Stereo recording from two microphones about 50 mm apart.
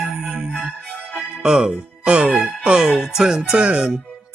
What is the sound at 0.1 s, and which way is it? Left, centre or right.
Music, centre.